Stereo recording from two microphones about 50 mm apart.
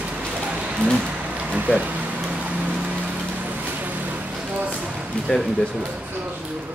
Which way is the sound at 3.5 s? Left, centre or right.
Right.